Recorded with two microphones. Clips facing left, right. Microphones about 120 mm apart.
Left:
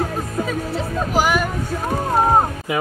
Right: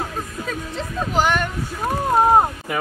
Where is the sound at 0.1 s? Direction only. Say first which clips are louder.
Left 6 dB; 40° left (ahead or behind).